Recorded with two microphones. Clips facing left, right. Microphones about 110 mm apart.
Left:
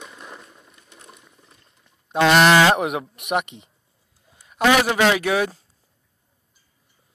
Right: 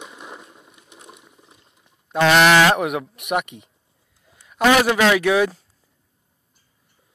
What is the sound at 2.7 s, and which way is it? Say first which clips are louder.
Speech: even; 20° left (ahead or behind).